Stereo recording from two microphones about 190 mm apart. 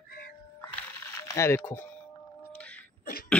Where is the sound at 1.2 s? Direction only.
15° left (ahead or behind).